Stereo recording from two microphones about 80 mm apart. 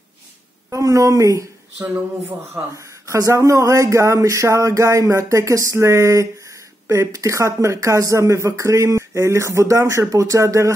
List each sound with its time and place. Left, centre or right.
0.7 s speech: right
2.0 s a man's voice: right
2.7 s speech: right